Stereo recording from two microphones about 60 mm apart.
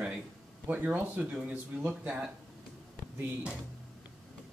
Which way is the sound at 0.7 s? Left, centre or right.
Right.